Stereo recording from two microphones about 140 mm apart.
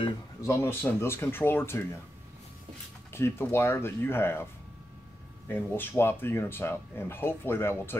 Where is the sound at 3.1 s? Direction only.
15° left (ahead or behind).